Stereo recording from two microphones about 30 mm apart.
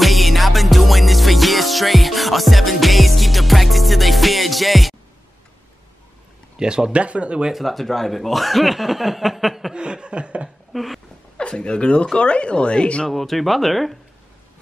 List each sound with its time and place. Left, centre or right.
0.0 s music: centre
6.6 s speech: right
6.9 s chuckle: right
7.5 s speech: centre
9.8 s chuckle: right
10.7 s a sound: centre
11.3 s speech: left
13.1 s speech: centre